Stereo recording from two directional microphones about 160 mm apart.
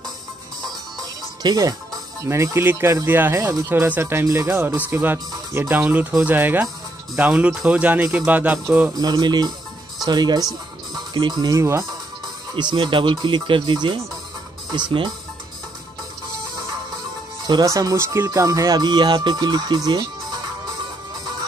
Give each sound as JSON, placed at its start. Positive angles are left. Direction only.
{"t": 1.4, "sound": "speech", "side_deg": -25}
{"t": 8.9, "sound": "speech", "side_deg": -25}
{"t": 17.5, "sound": "speech", "side_deg": -25}